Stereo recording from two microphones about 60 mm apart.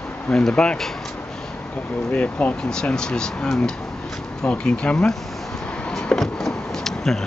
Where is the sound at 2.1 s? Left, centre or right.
Left.